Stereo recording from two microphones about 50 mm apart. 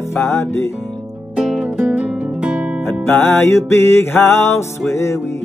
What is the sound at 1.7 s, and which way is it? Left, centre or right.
Music, right.